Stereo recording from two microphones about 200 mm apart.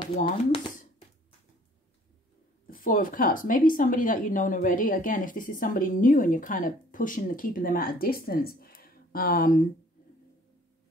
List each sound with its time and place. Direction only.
0.0 s speech: 25° left (ahead or behind)
2.6 s speech: 45° left (ahead or behind)